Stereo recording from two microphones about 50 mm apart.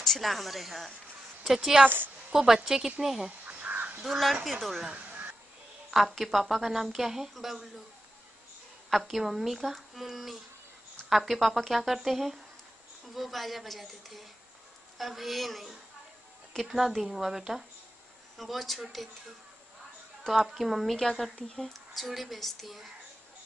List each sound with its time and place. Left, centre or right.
0.0 s a woman's voice: centre
3.3 s crow: right
4.0 s a woman's voice: centre
8.9 s a woman's voice: centre
20.2 s a woman's voice: centre
20.9 s a woman's voice: centre